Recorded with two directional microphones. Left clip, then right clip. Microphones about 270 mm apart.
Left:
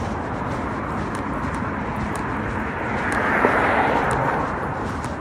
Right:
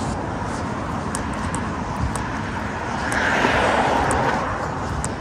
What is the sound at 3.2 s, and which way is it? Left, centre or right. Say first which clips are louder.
Vehicle: even; right.